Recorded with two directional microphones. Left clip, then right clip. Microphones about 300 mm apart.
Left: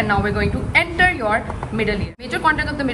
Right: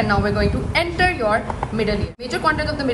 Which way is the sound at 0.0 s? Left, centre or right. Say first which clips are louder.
Even; centre.